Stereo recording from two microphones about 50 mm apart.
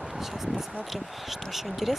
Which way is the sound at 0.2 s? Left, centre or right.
Centre.